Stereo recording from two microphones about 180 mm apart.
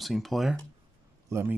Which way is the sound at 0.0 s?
Centre (ahead or behind).